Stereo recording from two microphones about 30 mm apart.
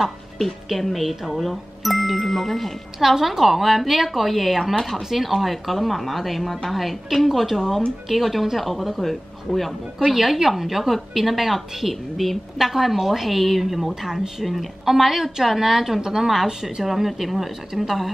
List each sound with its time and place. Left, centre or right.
0.7 s speech: centre
3.0 s a woman's voice: centre
10.1 s a woman's voice: centre
16.8 s a woman's voice: centre